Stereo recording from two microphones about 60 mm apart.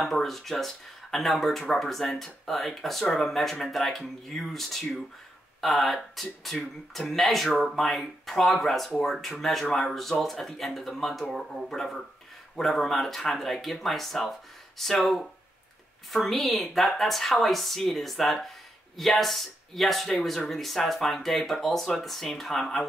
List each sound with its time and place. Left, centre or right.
0.0 s speech: centre